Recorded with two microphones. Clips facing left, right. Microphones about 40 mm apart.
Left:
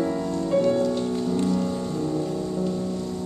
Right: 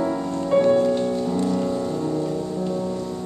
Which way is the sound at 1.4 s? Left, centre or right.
Centre.